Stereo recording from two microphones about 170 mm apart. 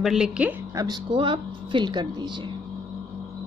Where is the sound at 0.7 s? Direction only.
25° right (ahead or behind).